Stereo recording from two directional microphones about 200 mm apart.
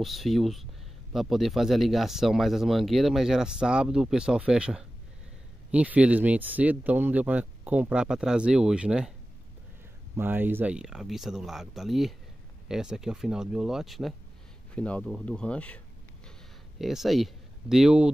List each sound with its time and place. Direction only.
0.0 s speech: centre (ahead or behind)
10.1 s speech: 10° right (ahead or behind); by 15.8 s 5° left (ahead or behind)
16.3 s a sound: centre (ahead or behind)